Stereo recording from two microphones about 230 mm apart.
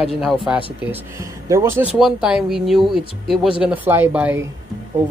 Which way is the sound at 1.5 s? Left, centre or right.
Centre.